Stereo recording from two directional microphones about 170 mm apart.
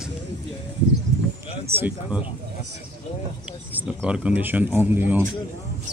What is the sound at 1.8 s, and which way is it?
Speech, 10° right (ahead or behind).